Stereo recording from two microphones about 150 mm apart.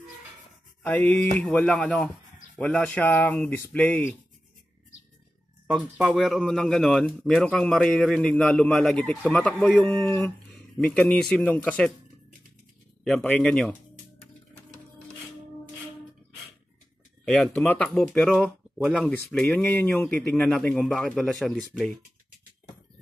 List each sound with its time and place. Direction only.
0.8 s speech: 10° left (ahead or behind)
5.7 s speech: centre (ahead or behind)
10.0 s speech: 15° left (ahead or behind)
10.8 s speech: 5° left (ahead or behind)
13.0 s speech: 5° left (ahead or behind)
17.2 s speech: 5° left (ahead or behind)
18.3 s speech: centre (ahead or behind)